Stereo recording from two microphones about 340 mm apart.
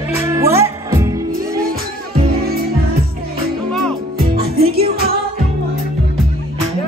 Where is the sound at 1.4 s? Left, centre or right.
Right.